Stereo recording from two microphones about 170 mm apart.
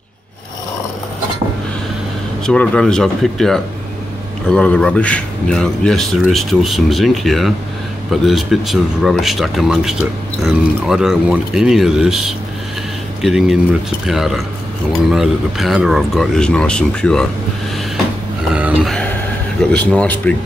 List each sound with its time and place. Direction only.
2.4 s speech: 5° left (ahead or behind)
18.5 s a sound: 5° right (ahead or behind)
19.7 s speech: 5° left (ahead or behind)